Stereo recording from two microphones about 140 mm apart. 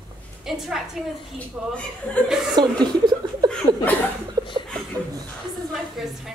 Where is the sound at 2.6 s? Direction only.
30° right (ahead or behind).